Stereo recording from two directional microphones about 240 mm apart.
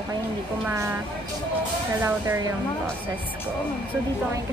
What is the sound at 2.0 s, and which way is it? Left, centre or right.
Speech, centre.